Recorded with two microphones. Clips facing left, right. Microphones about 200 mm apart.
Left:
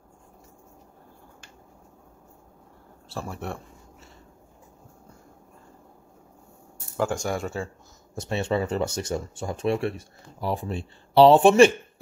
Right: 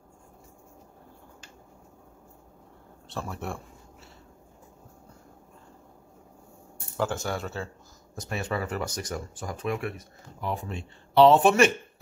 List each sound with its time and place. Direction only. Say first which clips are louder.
3.1 s speech: left 1 dB; centre (ahead or behind)
7.0 s speech: left 3 dB; centre (ahead or behind)
8.1 s speech: left 6 dB; 25° left (ahead or behind)